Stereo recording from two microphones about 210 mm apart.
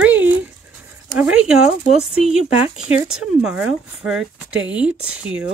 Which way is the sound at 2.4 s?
25° left (ahead or behind).